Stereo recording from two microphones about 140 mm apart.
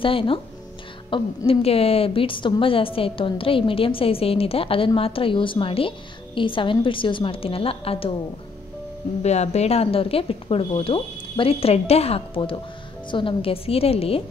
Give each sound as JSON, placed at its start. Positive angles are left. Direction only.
{"t": 0.0, "sound": "a woman's voice", "side_deg": 40}
{"t": 9.2, "sound": "speech", "side_deg": 50}